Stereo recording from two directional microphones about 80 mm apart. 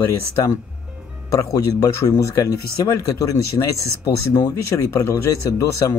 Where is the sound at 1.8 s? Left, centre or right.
Left.